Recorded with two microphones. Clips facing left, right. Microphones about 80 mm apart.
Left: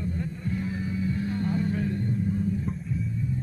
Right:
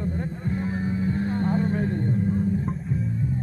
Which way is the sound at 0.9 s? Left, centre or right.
Right.